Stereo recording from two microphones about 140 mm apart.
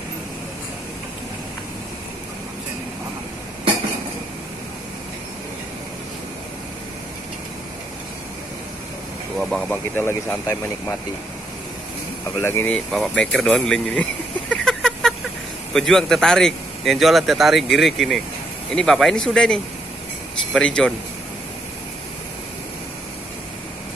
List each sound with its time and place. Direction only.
9.4 s a man's voice: centre (ahead or behind)
9.9 s speech: 15° left (ahead or behind)
12.4 s speech: 20° left (ahead or behind)
12.7 s a man's voice: 5° left (ahead or behind)
14.5 s a sound: 5° left (ahead or behind)
15.7 s a man's voice: 5° left (ahead or behind)